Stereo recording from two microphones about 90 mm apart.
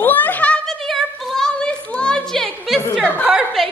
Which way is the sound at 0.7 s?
5° left (ahead or behind).